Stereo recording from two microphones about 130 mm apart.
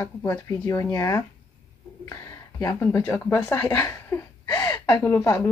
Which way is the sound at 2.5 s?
25° left (ahead or behind).